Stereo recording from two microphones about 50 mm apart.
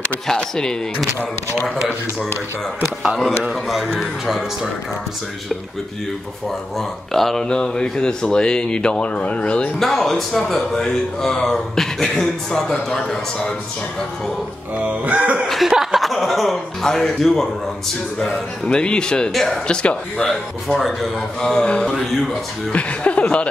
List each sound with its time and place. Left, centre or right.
0.3 s speech: centre
3.0 s a man's voice: centre
7.1 s speech: centre
7.4 s speech: centre
9.8 s speech: centre
14.9 s a sound: right
15.4 s a man's voice: centre
18.7 s speech: centre
19.3 s a man's voice: centre
19.7 s speech: centre
20.2 s a man's voice: centre
22.3 s speech: left